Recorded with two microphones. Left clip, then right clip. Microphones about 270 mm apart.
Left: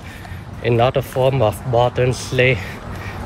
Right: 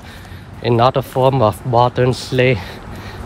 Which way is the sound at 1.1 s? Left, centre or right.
Right.